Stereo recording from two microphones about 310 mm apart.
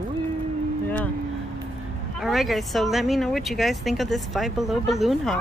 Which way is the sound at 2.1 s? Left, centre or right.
Centre.